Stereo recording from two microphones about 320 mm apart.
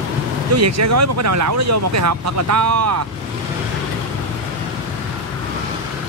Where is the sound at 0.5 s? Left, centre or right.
Right.